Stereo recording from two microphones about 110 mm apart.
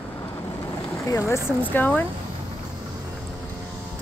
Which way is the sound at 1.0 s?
30° left (ahead or behind).